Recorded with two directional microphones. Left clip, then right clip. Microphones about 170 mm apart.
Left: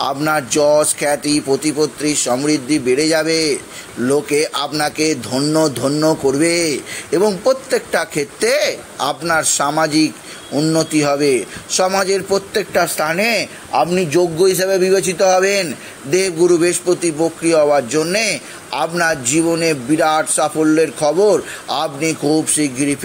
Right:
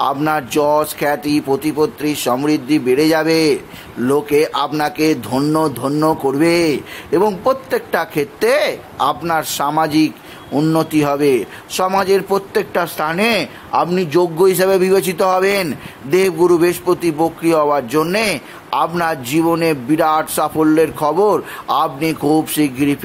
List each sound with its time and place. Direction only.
0.0 s speech: 5° right (ahead or behind)
9.6 s a man's voice: 10° right (ahead or behind)
11.7 s a man's voice: 15° right (ahead or behind)